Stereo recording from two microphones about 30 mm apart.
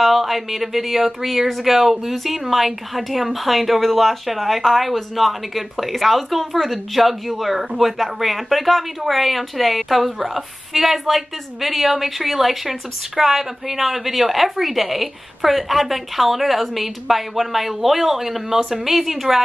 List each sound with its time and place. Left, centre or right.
0.0 s speech: centre